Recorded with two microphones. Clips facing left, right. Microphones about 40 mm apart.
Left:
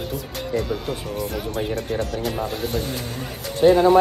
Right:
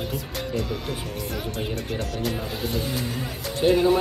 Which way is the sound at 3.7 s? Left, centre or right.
Centre.